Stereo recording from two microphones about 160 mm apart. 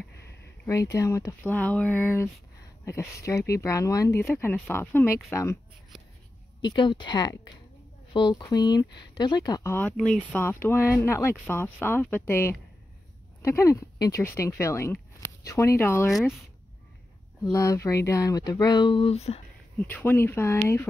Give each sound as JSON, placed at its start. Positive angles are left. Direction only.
{"t": 0.9, "sound": "speech", "side_deg": 20}
{"t": 6.6, "sound": "speech", "side_deg": 30}
{"t": 16.1, "sound": "speech", "side_deg": 0}
{"t": 17.4, "sound": "speech", "side_deg": 20}
{"t": 19.9, "sound": "speech", "side_deg": 15}